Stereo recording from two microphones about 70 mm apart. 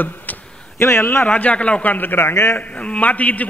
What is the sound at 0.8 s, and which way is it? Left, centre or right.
Speech, left.